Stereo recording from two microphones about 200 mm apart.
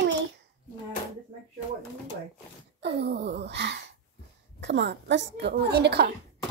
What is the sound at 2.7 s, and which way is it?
Wail, 55° right (ahead or behind).